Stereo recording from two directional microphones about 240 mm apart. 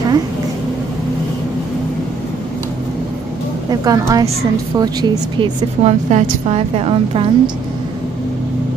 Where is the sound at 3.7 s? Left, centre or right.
Centre.